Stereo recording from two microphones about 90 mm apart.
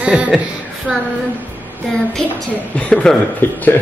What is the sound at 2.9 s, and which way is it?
Speech, 10° left (ahead or behind).